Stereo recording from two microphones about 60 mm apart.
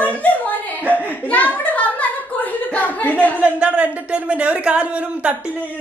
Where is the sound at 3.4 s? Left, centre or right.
Right.